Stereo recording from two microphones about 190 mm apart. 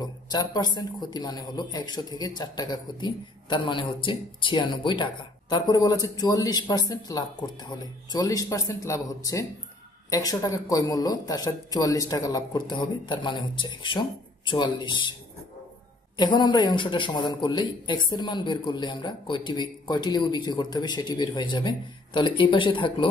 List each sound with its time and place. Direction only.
0.0 s speech: 20° left (ahead or behind)
16.2 s speech: 25° left (ahead or behind)